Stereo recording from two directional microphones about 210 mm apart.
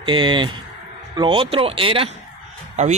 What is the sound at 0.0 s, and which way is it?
Speech, 25° right (ahead or behind).